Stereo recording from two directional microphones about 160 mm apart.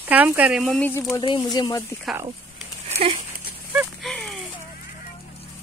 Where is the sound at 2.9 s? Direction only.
45° right (ahead or behind).